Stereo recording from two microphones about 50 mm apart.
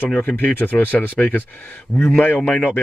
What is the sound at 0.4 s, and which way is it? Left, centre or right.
Speech, left.